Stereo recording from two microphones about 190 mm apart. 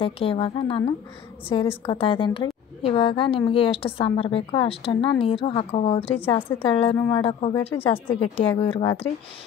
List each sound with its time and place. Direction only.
0.0 s a woman's voice: 30° left (ahead or behind)